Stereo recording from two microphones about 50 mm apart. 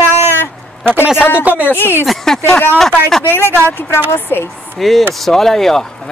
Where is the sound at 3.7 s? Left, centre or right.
Left.